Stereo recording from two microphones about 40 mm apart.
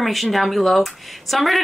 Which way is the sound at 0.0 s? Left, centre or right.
Centre.